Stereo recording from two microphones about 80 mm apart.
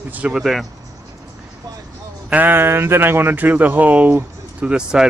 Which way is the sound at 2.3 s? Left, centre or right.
Right.